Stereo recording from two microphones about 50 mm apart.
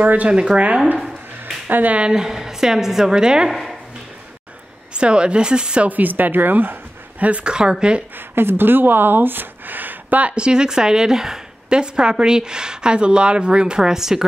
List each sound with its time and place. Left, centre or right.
0.0 s speech: right
0.3 s speech: centre
1.4 s a sound: right
2.0 s a woman's voice: centre
3.4 s speech: centre
4.9 s speech: centre
5.9 s speech: right
7.2 s speech: right
8.4 s speech: right
10.3 s a woman's voice: centre